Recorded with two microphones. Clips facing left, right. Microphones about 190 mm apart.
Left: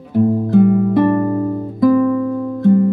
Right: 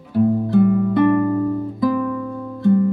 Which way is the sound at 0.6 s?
20° left (ahead or behind).